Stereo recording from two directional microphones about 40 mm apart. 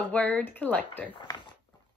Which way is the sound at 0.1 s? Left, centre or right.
Left.